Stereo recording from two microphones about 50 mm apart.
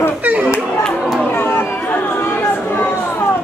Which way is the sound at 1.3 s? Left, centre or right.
Left.